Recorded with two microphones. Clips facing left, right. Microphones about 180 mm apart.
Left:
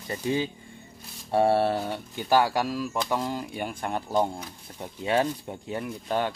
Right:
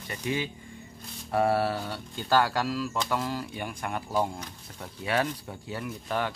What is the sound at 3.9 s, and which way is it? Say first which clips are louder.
Speech: left 3 dB; 30° left (ahead or behind).